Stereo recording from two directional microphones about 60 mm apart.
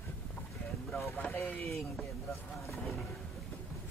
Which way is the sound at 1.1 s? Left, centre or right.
Left.